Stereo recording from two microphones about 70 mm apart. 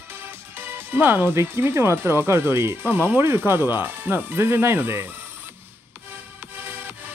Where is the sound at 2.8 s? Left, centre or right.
Right.